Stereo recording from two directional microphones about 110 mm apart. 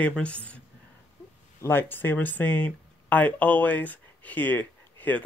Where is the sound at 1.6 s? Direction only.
20° left (ahead or behind).